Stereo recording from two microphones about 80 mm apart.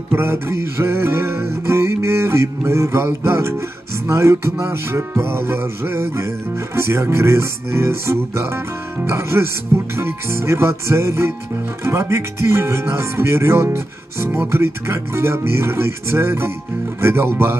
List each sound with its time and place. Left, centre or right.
0.1 s music: right